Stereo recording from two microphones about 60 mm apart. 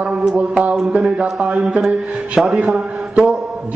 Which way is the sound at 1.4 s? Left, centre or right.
Centre.